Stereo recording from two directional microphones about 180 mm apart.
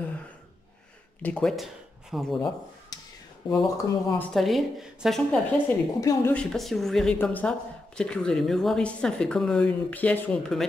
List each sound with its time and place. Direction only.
1.2 s speech: 5° left (ahead or behind)
2.9 s a sound: 20° left (ahead or behind)
3.4 s speech: 20° left (ahead or behind)
4.3 s speech: centre (ahead or behind)
5.9 s a woman's voice: 20° left (ahead or behind)
6.3 s speech: 5° left (ahead or behind)